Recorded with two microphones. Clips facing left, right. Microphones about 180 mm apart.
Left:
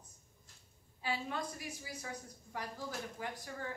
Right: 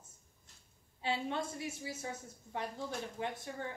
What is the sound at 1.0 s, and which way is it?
A woman's voice, 25° right (ahead or behind).